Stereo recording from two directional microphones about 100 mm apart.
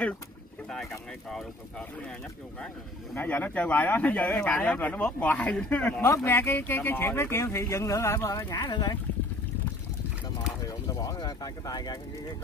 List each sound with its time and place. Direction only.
3.2 s speech: 15° left (ahead or behind)
8.5 s speech: 45° left (ahead or behind)
10.6 s speech: 40° left (ahead or behind)